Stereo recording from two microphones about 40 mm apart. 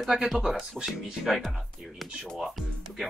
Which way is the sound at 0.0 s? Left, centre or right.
Centre.